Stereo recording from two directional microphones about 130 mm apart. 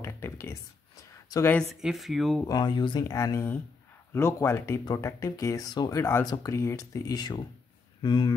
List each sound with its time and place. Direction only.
0.0 s a sound: 20° left (ahead or behind)
1.3 s speech: 30° left (ahead or behind)
1.8 s speech: centre (ahead or behind)
2.4 s speech: 30° left (ahead or behind)